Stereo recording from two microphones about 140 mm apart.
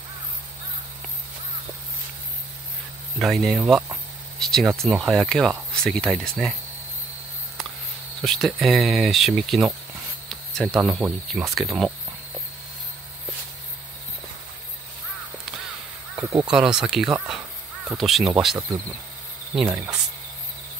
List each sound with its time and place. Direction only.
3.2 s speech: centre (ahead or behind)
3.6 s speech: 10° right (ahead or behind)
4.4 s speech: 5° left (ahead or behind)
8.2 s speech: centre (ahead or behind)
16.2 s speech: 25° right (ahead or behind)
16.4 s speech: 5° right (ahead or behind)